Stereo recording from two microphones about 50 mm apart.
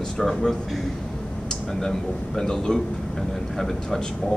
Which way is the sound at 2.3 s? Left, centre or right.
Centre.